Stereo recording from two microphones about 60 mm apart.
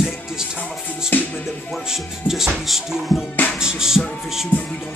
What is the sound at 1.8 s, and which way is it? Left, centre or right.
Music, centre.